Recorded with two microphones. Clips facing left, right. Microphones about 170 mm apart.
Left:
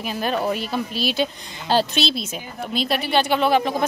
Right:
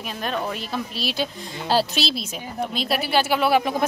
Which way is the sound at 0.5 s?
Centre (ahead or behind).